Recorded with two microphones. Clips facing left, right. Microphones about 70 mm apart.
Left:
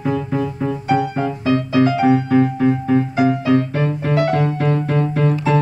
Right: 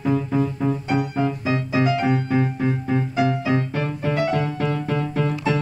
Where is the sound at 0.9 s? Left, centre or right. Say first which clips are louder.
Left 7 dB; left.